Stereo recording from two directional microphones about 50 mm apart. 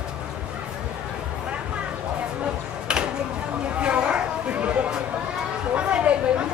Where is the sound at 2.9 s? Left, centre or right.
Centre.